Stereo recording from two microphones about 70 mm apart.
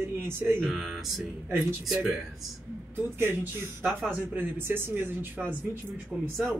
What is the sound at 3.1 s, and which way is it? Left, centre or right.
Speech, right.